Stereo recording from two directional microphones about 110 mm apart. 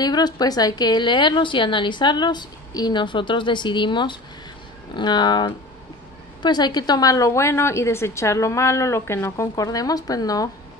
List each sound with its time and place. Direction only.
0.0 s a woman's voice: 40° left (ahead or behind)